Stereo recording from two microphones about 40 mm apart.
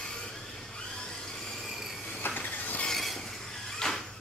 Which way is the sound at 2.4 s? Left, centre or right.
Left.